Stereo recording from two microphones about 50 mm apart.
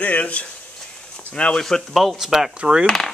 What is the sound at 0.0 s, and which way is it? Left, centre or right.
Speech, left.